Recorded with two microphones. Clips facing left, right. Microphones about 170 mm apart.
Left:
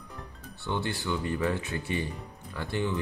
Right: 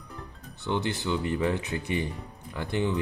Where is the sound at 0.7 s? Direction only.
20° right (ahead or behind).